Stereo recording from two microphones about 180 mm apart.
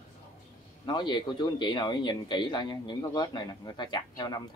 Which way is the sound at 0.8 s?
25° left (ahead or behind).